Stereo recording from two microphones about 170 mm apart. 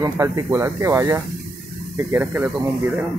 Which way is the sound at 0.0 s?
20° right (ahead or behind).